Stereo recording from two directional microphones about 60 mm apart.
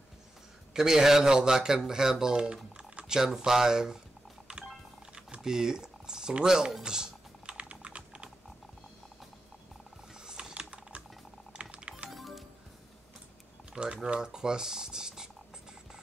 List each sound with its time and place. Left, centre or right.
0.7 s speech: centre
4.5 s music: centre
5.1 s typing: centre
10.2 s typing: centre
11.7 s music: right
12.1 s music: centre
14.0 s speech: centre